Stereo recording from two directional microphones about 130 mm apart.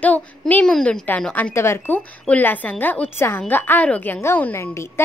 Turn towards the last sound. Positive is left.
turn(degrees=20)  # may be behind; listen again after turning